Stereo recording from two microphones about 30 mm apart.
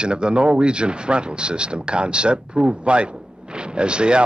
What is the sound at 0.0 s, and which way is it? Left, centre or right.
A man's voice, right.